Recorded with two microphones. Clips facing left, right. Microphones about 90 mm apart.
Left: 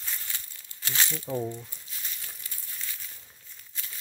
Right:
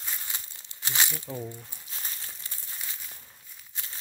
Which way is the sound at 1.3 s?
20° left (ahead or behind).